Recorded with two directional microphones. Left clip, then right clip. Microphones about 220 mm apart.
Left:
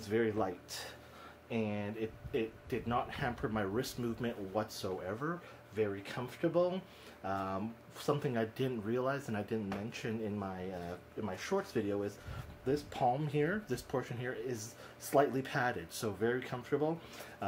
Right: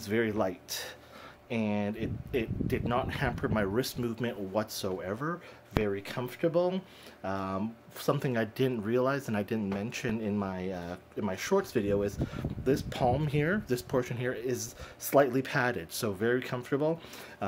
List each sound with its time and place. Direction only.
0.0 s speech: 50° right (ahead or behind)